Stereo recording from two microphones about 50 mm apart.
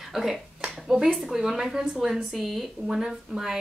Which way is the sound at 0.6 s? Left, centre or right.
Centre.